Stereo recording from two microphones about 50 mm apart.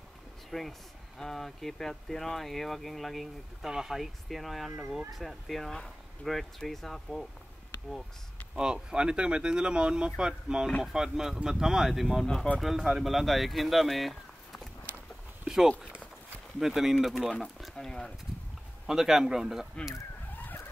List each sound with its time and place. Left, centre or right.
0.5 s speech: centre
3.7 s speech: centre
8.9 s speech: centre
15.4 s speech: centre
17.7 s speech: centre
18.9 s speech: centre